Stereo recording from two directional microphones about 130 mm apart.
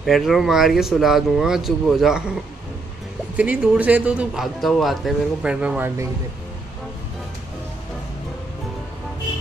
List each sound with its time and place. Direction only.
0.0 s speech: centre (ahead or behind)
3.3 s speech: 10° right (ahead or behind)